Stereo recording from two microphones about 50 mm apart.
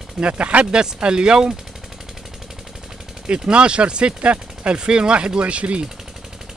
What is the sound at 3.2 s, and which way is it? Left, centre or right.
Speech, right.